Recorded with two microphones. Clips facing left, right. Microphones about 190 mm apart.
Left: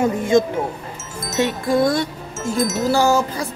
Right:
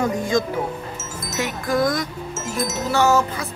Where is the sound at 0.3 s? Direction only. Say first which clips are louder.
Left 7 dB; 25° left (ahead or behind).